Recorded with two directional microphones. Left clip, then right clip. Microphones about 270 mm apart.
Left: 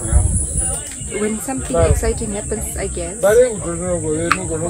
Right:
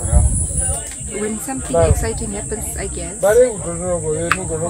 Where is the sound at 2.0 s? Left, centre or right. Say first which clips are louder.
Left 3 dB; centre.